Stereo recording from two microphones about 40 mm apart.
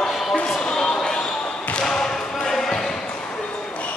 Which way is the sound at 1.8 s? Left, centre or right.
Centre.